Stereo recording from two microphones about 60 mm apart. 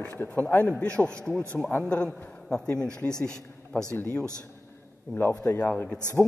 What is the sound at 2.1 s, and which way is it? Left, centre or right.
Speech, left.